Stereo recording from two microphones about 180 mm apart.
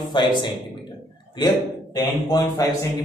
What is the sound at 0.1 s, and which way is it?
Speech, 25° left (ahead or behind).